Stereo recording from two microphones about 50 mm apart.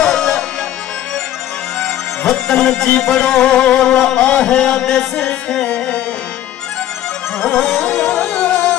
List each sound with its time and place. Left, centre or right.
0.0 s music: centre
1.8 s music: centre
7.4 s music: centre
8.3 s music: left